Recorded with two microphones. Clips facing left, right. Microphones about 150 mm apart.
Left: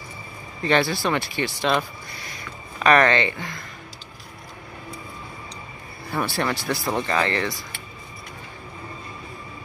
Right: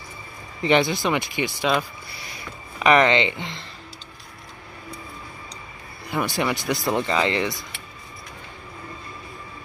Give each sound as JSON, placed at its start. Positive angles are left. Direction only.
{"t": 0.6, "sound": "speech", "side_deg": -20}
{"t": 2.8, "sound": "speech", "side_deg": -15}
{"t": 6.0, "sound": "speech", "side_deg": -15}